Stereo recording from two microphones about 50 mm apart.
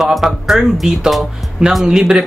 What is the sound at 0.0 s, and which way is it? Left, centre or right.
Speech, centre.